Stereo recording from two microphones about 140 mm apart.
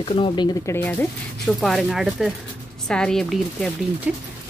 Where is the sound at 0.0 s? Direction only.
35° left (ahead or behind).